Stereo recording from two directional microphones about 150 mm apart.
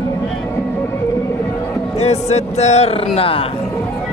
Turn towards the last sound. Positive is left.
turn(degrees=40)  # may be behind; listen again after turning